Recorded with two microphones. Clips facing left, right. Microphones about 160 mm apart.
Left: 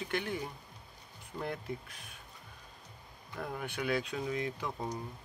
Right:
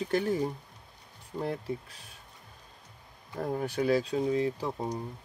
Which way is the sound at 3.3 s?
35° right (ahead or behind).